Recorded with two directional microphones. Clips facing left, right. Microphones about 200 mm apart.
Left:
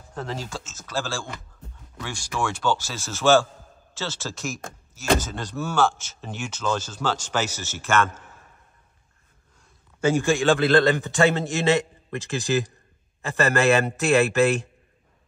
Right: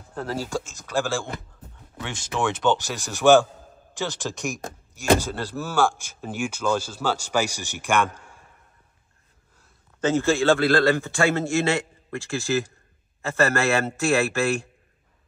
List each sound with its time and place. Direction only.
0.1 s speech: 5° right (ahead or behind)
9.9 s a man's voice: 10° left (ahead or behind)